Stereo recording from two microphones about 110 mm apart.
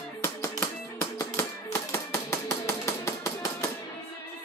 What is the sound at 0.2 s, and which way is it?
Music, 25° left (ahead or behind).